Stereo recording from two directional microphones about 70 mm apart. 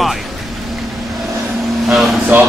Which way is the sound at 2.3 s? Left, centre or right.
Right.